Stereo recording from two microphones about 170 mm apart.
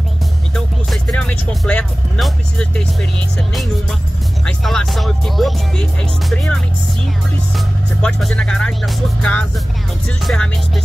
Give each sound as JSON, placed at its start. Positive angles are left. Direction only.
{"t": 0.8, "sound": "speech", "side_deg": 5}
{"t": 4.5, "sound": "speech", "side_deg": 0}